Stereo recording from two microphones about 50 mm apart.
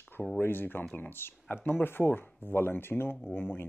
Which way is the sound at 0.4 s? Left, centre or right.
Left.